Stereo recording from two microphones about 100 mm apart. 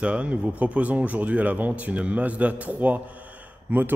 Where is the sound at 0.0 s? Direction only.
10° right (ahead or behind).